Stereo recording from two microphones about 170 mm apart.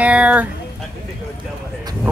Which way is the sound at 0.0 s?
10° right (ahead or behind).